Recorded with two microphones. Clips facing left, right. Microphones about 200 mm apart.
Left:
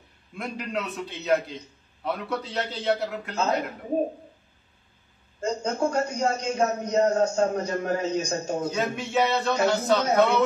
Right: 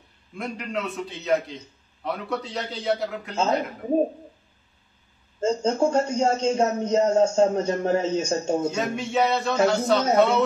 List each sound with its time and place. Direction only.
0.4 s a man's voice: centre (ahead or behind)
5.4 s a man's voice: 25° right (ahead or behind)
8.7 s a man's voice: centre (ahead or behind)